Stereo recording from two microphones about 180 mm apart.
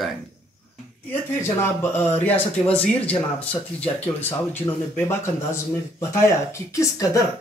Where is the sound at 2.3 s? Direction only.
10° left (ahead or behind).